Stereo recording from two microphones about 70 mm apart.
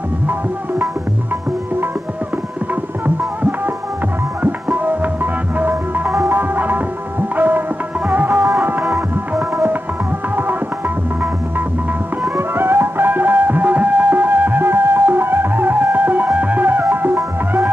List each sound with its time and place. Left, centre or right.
4.4 s music: right
12.4 s music: right